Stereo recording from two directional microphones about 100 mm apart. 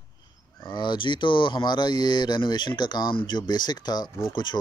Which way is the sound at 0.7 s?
50° left (ahead or behind).